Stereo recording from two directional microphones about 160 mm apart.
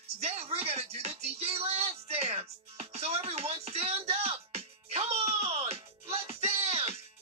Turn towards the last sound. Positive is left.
turn(degrees=-40)  # may be behind; listen again after turning